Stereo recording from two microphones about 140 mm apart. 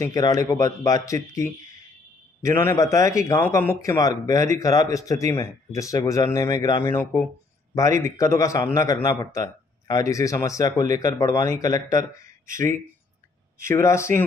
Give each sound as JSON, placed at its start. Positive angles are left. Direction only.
{"t": 0.0, "sound": "a man's voice", "side_deg": 25}
{"t": 13.6, "sound": "a man's voice", "side_deg": 20}